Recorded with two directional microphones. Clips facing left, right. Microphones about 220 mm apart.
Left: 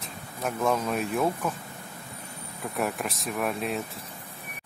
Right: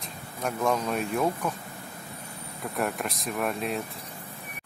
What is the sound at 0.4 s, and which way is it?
Speech, centre (ahead or behind).